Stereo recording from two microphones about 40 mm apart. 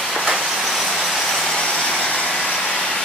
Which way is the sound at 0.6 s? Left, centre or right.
Centre.